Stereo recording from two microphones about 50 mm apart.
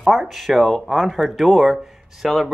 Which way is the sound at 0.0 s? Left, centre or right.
Centre.